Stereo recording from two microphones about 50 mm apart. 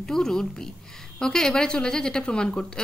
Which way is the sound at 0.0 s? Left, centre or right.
Centre.